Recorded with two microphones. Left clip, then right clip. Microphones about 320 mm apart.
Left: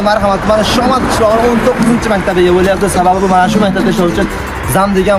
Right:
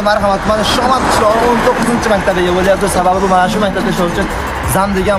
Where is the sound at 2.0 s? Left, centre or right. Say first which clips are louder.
Left 2 dB; centre.